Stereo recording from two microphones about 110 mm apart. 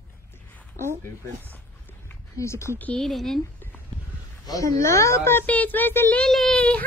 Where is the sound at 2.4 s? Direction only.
25° left (ahead or behind).